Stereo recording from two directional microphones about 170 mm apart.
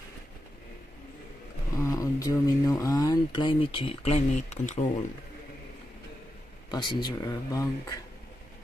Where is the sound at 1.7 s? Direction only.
20° left (ahead or behind); by 4.9 s 45° left (ahead or behind).